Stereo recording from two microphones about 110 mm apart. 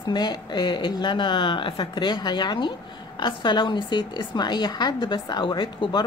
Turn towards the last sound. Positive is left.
turn(degrees=45)  # may be behind; listen again after turning